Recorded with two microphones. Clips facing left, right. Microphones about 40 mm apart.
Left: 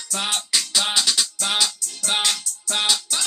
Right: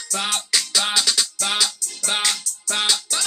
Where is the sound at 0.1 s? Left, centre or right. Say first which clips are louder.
Right 1 dB; centre.